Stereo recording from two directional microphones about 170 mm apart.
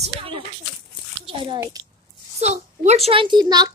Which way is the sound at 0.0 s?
35° right (ahead or behind).